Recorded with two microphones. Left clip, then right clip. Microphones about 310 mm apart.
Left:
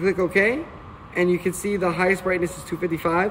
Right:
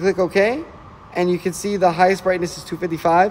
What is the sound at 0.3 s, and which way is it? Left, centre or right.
Speech, right.